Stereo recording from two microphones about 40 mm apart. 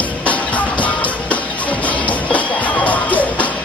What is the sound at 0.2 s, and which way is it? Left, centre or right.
Music, left.